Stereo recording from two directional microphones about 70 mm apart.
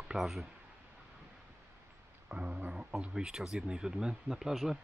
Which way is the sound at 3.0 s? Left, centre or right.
Centre.